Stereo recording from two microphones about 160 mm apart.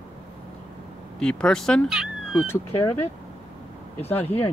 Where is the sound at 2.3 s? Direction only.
15° left (ahead or behind).